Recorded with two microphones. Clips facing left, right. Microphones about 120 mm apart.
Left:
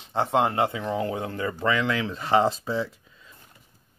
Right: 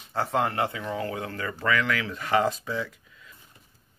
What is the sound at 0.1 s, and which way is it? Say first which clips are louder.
Speech: left 3 dB; 20° left (ahead or behind).